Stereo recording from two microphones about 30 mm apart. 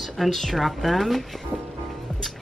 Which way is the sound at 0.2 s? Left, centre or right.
Centre.